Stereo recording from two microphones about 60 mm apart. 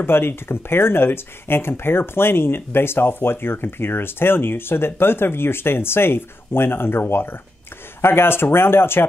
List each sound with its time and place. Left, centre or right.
0.0 s speech: left